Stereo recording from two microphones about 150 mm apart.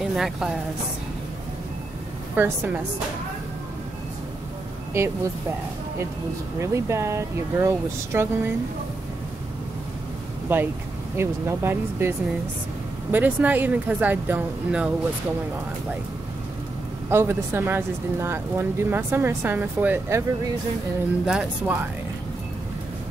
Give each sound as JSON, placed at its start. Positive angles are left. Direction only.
{"t": 0.0, "sound": "a woman's voice", "side_deg": 0}
{"t": 2.3, "sound": "speech", "side_deg": -15}
{"t": 4.9, "sound": "speech", "side_deg": -15}
{"t": 6.6, "sound": "speech", "side_deg": -20}
{"t": 10.5, "sound": "speech", "side_deg": -10}
{"t": 13.1, "sound": "speech", "side_deg": -10}
{"t": 17.1, "sound": "speech", "side_deg": -15}
{"t": 21.3, "sound": "speech", "side_deg": -5}